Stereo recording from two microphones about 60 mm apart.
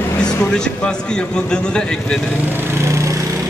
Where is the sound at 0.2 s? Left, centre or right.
Centre.